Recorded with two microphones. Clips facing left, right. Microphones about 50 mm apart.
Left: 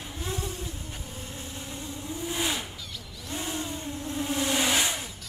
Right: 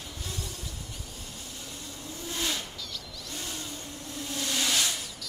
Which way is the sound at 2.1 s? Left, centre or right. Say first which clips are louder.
Left 3 dB; centre.